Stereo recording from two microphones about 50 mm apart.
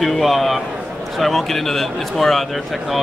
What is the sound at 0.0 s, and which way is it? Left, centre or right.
A man's voice, centre.